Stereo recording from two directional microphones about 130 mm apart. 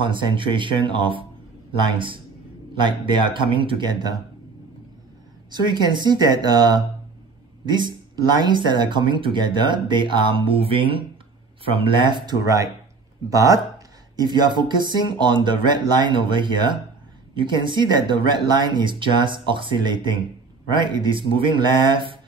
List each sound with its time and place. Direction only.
0.0 s speech: 40° right (ahead or behind)
5.5 s speech: 35° right (ahead or behind)